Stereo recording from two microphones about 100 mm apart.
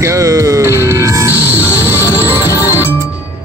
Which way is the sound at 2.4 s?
35° left (ahead or behind).